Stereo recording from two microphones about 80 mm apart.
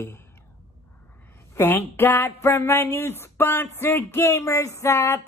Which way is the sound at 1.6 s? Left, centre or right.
Left.